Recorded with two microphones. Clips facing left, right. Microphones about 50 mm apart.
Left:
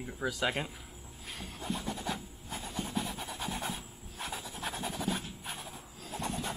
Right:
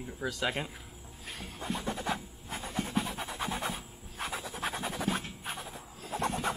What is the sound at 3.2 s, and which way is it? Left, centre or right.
Scratch, right.